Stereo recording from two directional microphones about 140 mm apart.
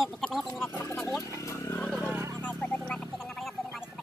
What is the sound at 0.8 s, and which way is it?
Speech, 20° left (ahead or behind).